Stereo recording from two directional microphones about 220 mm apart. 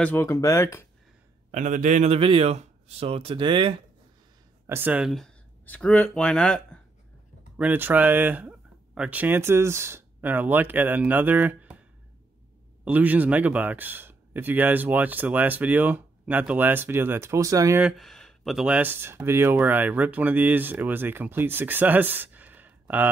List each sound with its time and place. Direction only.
0.0 s speech: 10° left (ahead or behind)
1.5 s a man's voice: 35° right (ahead or behind)
4.6 s speech: 10° right (ahead or behind)
7.5 s speech: 10° right (ahead or behind)
12.8 s speech: 5° right (ahead or behind)